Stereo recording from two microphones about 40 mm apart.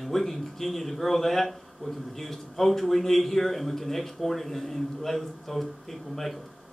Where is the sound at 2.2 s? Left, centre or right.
Centre.